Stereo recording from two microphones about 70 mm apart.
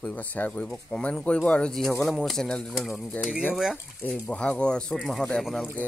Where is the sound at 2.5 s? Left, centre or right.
Centre.